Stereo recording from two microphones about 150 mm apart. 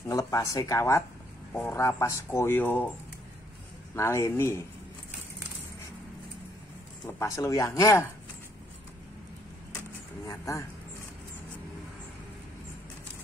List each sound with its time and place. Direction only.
0.1 s speech: 20° left (ahead or behind)
3.9 s speech: 15° left (ahead or behind)
7.2 s speech: 20° left (ahead or behind)
10.2 s speech: 20° left (ahead or behind)